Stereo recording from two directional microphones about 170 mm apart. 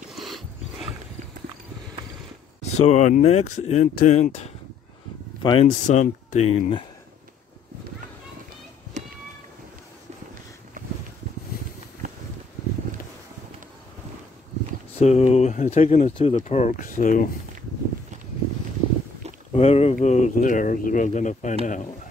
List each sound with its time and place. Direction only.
0.1 s dog: centre (ahead or behind)
2.6 s speech: 40° left (ahead or behind)
5.4 s speech: 25° left (ahead or behind)
5.7 s speech: 45° left (ahead or behind)
15.0 s speech: 40° left (ahead or behind)
19.5 s speech: 35° left (ahead or behind)